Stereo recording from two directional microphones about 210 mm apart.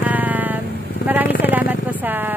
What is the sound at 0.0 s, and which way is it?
Vehicle, 10° right (ahead or behind).